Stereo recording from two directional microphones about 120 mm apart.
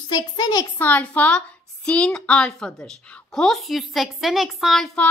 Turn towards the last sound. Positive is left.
turn(degrees=0)  # may be behind; listen again after turning